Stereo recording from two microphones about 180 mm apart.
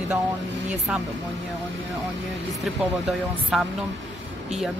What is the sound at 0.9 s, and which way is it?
Speech, 5° right (ahead or behind).